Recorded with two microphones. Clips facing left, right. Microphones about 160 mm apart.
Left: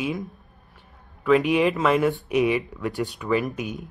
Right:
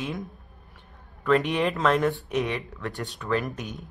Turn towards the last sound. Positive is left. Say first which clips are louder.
# left 4 dB
turn(degrees=5)  # may be behind; listen again after turning